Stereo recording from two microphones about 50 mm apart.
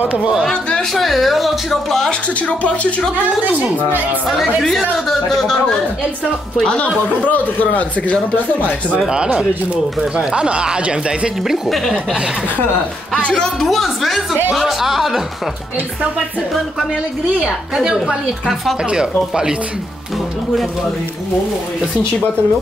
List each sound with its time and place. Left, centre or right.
0.0 s speech: right
0.7 s speech: centre
2.0 s speech: left
4.3 s speech: centre
6.5 s speech: centre
7.1 s speech: left
9.1 s a woman's voice: centre
11.4 s a woman's voice: centre
11.8 s speech: centre
13.6 s speech: centre
17.8 s a woman's voice: centre